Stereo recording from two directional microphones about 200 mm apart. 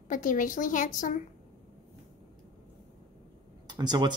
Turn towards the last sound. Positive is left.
turn(degrees=-20)  # may be behind; listen again after turning